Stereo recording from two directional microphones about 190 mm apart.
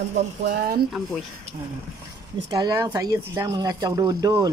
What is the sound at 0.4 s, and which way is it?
Speech, 55° right (ahead or behind).